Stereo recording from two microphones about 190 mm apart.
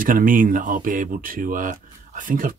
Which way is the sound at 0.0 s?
45° right (ahead or behind).